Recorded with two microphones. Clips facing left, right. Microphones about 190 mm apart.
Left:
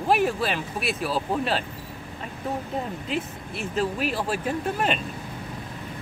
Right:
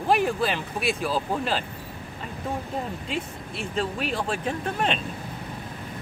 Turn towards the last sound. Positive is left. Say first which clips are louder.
# left 1 dB
turn(degrees=5)  # may be behind; listen again after turning